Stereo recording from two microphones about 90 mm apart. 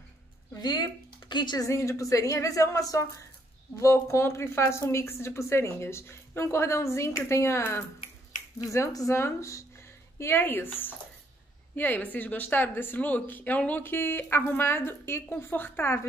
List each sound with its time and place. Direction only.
0.6 s speech: 50° left (ahead or behind)
1.6 s speech: 35° left (ahead or behind)